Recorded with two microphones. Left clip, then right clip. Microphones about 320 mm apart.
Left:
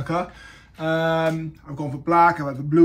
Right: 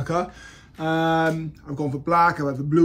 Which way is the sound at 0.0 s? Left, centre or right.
Centre.